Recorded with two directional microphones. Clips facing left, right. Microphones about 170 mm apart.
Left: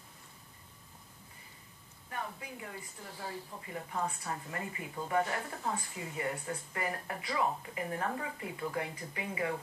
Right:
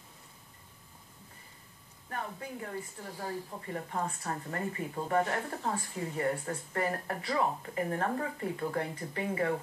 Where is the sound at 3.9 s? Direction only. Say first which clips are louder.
Even; 40° right (ahead or behind).